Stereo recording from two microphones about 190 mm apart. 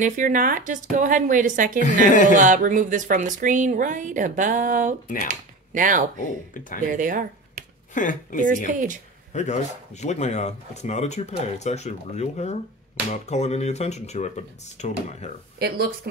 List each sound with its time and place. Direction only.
0.0 s a woman's voice: 45° right (ahead or behind)
1.8 s speech: 40° left (ahead or behind)
2.2 s a woman's voice: 45° right (ahead or behind)
5.0 s speech: 45° left (ahead or behind)
5.3 s speech: 45° right (ahead or behind)
7.9 s speech: 45° left (ahead or behind)
8.7 s a woman's voice: 45° right (ahead or behind)
9.3 s speech: 40° left (ahead or behind)